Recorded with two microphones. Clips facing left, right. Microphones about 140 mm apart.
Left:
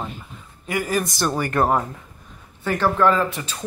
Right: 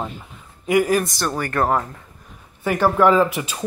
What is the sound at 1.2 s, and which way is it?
Speech, 15° left (ahead or behind).